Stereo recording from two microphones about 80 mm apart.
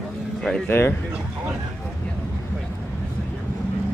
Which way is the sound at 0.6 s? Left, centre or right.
Left.